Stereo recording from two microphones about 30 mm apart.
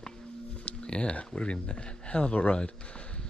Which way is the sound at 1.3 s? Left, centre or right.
Left.